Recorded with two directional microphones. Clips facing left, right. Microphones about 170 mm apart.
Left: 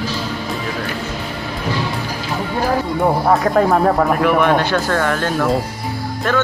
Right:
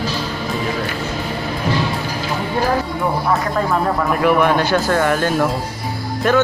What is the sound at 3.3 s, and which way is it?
Speech, 50° left (ahead or behind).